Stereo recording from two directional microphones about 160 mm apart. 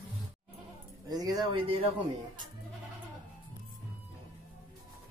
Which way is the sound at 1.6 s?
35° right (ahead or behind).